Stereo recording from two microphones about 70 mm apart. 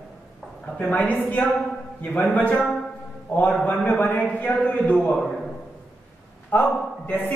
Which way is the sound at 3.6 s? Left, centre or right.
Centre.